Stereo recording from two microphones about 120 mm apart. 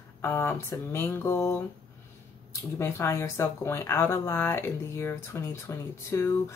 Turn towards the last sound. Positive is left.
turn(degrees=25)  # may be behind; listen again after turning